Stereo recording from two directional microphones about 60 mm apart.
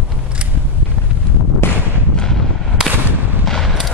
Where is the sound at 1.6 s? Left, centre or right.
Left.